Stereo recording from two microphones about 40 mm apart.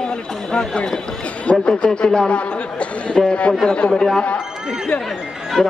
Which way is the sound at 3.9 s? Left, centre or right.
Centre.